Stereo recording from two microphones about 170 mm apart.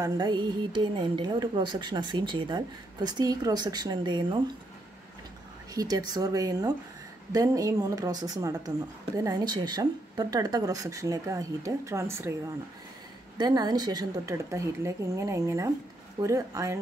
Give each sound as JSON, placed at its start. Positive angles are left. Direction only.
{"t": 0.0, "sound": "speech", "side_deg": -25}
{"t": 5.8, "sound": "speech", "side_deg": -20}
{"t": 13.4, "sound": "a woman's voice", "side_deg": -25}